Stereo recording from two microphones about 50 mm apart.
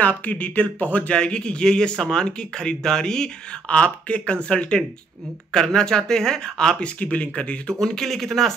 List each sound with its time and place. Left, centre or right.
0.0 s speech: left; by 6.9 s centre
7.0 s speech: left
7.8 s speech: centre